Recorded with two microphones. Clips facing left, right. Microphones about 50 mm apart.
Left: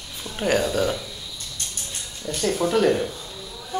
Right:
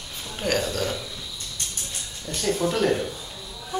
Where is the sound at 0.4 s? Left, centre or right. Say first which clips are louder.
Left 4 dB; centre.